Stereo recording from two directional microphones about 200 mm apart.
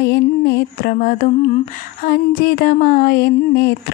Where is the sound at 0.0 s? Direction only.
55° left (ahead or behind).